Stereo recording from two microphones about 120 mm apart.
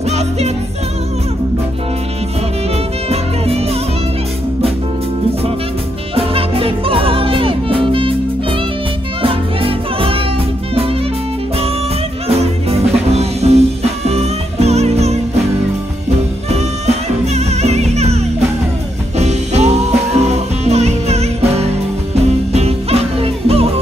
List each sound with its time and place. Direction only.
0.1 s music: 65° right (ahead or behind)
3.1 s music: 55° right (ahead or behind)
6.1 s music: 50° right (ahead or behind)
12.3 s music: 60° right (ahead or behind)
16.4 s music: 65° right (ahead or behind)